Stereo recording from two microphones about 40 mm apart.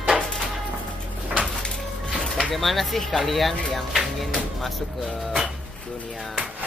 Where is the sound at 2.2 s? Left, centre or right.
Centre.